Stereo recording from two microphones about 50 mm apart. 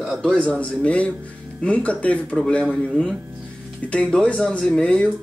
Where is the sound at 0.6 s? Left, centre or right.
Left.